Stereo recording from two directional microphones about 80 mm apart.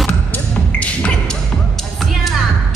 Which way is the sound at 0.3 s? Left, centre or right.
Centre.